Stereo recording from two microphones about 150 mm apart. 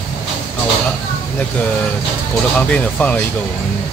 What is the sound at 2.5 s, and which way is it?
Speech, 10° left (ahead or behind).